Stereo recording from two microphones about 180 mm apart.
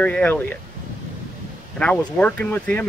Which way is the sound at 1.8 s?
5° left (ahead or behind).